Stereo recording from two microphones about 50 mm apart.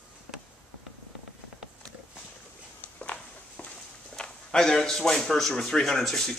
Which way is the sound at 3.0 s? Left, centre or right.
Left.